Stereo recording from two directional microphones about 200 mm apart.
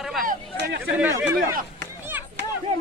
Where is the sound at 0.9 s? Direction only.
10° right (ahead or behind).